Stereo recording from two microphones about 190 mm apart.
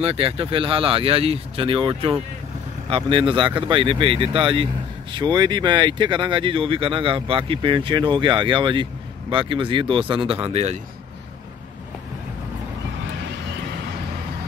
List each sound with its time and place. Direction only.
0.0 s speech: 30° right (ahead or behind)